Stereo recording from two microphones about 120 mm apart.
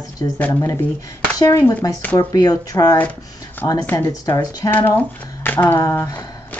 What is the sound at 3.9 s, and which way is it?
Speech, 30° left (ahead or behind).